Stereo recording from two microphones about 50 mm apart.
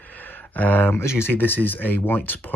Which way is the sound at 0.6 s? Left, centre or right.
Left.